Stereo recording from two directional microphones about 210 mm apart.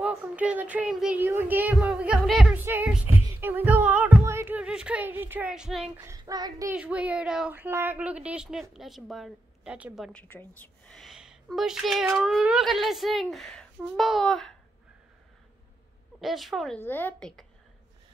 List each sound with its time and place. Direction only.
0.0 s speech: 5° right (ahead or behind)
5.9 s speech: 15° right (ahead or behind)
6.7 s a woman's voice: 5° right (ahead or behind)
10.2 s a woman's voice: 10° left (ahead or behind)
16.2 s a woman's voice: centre (ahead or behind)